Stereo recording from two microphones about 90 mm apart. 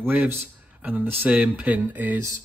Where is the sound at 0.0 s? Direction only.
20° right (ahead or behind).